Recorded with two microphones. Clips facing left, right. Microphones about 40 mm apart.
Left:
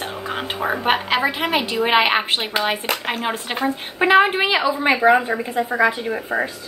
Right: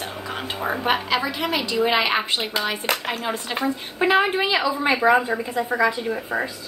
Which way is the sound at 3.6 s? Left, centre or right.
Left.